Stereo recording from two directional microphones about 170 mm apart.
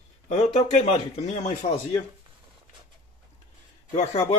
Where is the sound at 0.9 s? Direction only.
40° left (ahead or behind).